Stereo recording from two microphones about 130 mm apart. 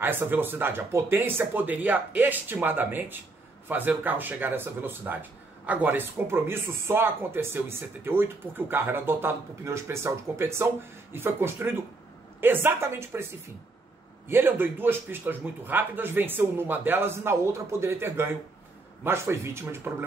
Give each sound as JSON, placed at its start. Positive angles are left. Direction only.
{"t": 0.0, "sound": "speech", "side_deg": -15}
{"t": 14.2, "sound": "speech", "side_deg": -15}